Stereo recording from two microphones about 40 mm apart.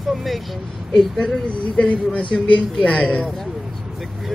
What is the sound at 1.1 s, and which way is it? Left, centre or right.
Speech, centre.